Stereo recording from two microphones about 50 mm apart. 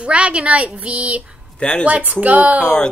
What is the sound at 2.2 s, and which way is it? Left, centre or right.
Speech, right.